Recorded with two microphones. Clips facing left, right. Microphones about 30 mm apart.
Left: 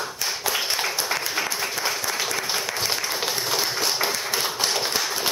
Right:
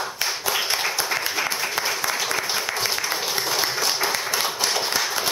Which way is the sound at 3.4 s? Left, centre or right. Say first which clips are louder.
Right 2 dB; centre.